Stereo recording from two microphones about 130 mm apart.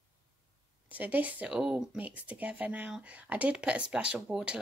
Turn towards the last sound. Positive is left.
turn(degrees=-10)  # may be behind; listen again after turning